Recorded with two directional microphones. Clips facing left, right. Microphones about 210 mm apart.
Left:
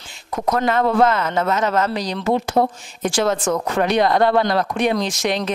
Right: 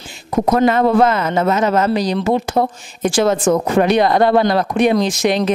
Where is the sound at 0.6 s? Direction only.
10° right (ahead or behind).